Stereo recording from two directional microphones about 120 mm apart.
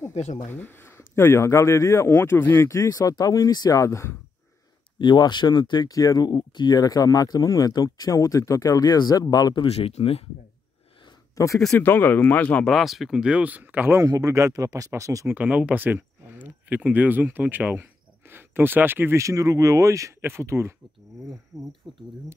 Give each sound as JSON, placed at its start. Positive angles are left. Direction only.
{"t": 0.1, "sound": "speech", "side_deg": 80}
{"t": 0.5, "sound": "speech", "side_deg": 15}
{"t": 4.9, "sound": "speech", "side_deg": 40}
{"t": 9.7, "sound": "speech", "side_deg": 60}
{"t": 11.3, "sound": "speech", "side_deg": 25}
{"t": 11.8, "sound": "speech", "side_deg": 15}
{"t": 12.6, "sound": "speech", "side_deg": 0}
{"t": 15.3, "sound": "speech", "side_deg": -10}
{"t": 21.5, "sound": "speech", "side_deg": 0}